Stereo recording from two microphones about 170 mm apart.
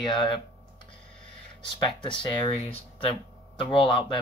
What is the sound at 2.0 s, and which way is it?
Speech, 30° left (ahead or behind).